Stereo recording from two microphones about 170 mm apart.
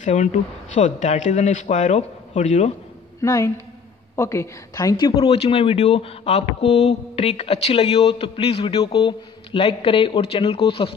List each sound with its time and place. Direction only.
0.0 s a man's voice: 40° left (ahead or behind)
3.2 s a woman's voice: 20° left (ahead or behind)
5.1 s a man's voice: 35° left (ahead or behind)